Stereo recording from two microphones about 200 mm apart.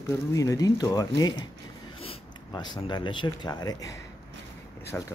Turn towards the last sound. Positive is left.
turn(degrees=5)  # may be behind; listen again after turning